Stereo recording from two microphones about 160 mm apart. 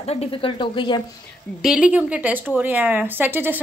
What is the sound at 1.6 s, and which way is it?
Speech, 5° right (ahead or behind).